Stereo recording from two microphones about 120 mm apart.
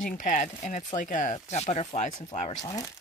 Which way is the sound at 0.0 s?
90° left.